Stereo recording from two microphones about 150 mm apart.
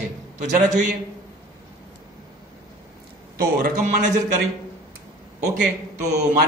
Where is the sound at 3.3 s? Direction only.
75° right (ahead or behind).